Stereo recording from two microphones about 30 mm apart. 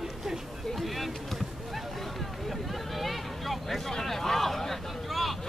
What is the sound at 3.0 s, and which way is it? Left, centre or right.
Vehicle, centre.